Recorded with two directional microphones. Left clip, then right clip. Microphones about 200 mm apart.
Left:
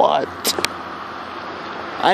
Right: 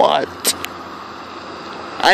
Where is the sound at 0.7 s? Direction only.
25° right (ahead or behind).